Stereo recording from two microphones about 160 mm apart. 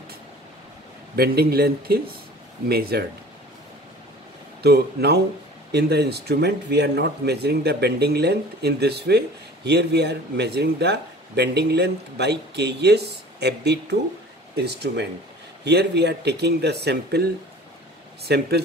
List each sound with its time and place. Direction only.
1.1 s a man's voice: 75° right (ahead or behind)
4.6 s speech: 90° right